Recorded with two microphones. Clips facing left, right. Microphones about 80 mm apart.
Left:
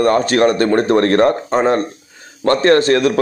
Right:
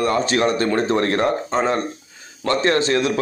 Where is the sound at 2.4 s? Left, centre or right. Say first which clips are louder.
Left 6 dB; left.